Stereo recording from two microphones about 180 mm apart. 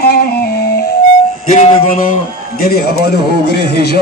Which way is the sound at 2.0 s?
55° left (ahead or behind).